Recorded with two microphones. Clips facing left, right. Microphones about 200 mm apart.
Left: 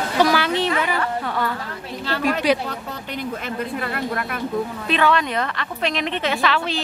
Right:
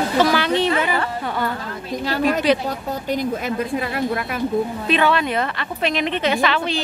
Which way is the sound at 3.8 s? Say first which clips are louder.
Right 3 dB; 50° left (ahead or behind).